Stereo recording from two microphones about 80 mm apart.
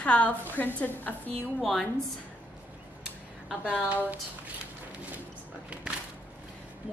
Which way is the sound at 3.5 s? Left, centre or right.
Centre.